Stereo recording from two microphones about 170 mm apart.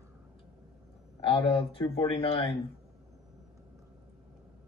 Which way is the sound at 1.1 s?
30° left (ahead or behind).